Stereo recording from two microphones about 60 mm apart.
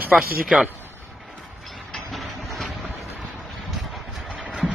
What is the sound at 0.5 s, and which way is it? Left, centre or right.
Speech, centre.